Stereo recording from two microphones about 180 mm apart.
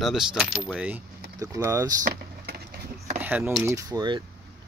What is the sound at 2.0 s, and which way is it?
Vehicle, 65° right (ahead or behind).